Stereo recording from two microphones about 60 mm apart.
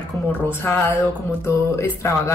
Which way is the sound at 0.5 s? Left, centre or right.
Left.